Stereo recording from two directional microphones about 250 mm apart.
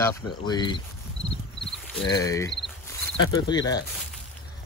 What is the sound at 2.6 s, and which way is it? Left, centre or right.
Cricket, centre.